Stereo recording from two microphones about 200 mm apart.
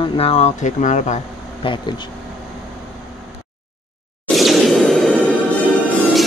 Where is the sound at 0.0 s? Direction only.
25° left (ahead or behind).